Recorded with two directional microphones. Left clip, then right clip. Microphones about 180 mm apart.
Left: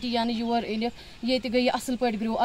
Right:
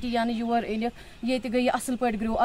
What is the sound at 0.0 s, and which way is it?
A woman's voice, 5° left (ahead or behind).